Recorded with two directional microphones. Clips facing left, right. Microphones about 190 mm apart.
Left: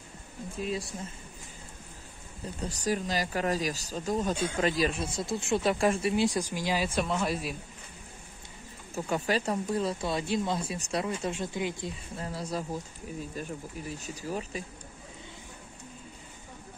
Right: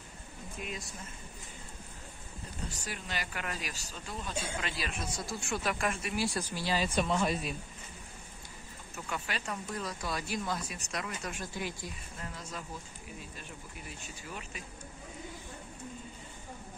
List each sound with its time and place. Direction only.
0.6 s speech: 35° left (ahead or behind)
2.7 s speech: 40° left (ahead or behind)
6.2 s speech: 15° left (ahead or behind)
7.0 s speech: centre (ahead or behind)
8.9 s speech: 35° left (ahead or behind)